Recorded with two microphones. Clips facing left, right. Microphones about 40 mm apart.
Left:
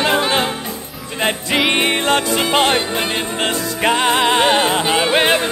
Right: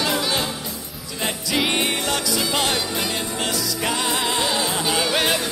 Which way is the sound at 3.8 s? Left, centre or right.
Left.